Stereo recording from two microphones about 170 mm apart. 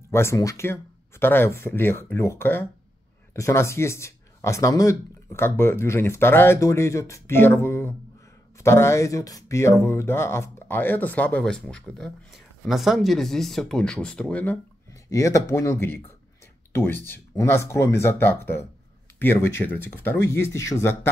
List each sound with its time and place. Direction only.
0.1 s speech: 15° left (ahead or behind)
15.0 s speech: 20° left (ahead or behind)